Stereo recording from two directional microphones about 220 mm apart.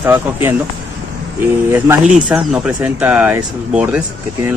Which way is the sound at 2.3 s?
5° right (ahead or behind).